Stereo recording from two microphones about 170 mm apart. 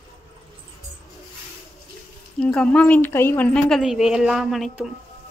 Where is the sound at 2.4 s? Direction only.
5° left (ahead or behind).